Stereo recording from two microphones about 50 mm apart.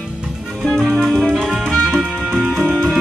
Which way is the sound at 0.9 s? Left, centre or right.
Centre.